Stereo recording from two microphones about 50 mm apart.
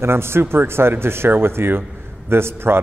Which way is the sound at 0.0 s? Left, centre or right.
Right.